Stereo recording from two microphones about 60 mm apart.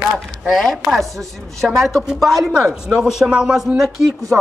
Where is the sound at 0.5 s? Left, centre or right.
Centre.